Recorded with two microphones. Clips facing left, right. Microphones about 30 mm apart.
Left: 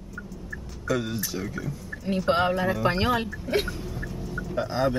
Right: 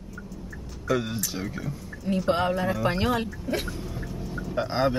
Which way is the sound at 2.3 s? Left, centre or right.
Centre.